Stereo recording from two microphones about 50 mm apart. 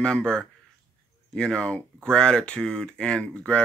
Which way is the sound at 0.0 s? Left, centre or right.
Centre.